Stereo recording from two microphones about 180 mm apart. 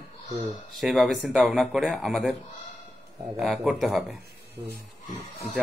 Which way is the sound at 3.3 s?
Centre (ahead or behind).